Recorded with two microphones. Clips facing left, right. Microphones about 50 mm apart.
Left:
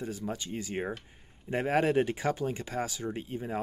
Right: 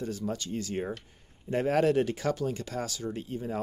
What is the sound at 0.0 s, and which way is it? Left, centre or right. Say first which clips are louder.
Speech: right 2 dB; centre.